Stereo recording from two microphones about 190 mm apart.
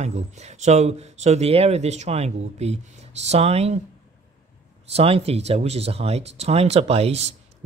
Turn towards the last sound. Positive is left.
turn(degrees=-35)  # may be behind; listen again after turning